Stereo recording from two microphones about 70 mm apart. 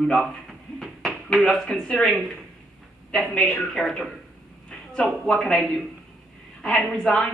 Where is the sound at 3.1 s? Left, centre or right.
Centre.